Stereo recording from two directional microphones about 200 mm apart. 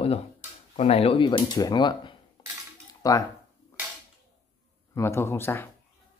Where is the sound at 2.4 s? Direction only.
20° left (ahead or behind).